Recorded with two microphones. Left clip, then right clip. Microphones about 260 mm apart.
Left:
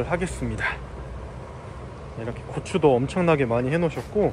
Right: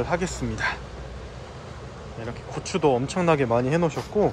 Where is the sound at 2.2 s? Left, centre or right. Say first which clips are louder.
Left 1 dB; centre.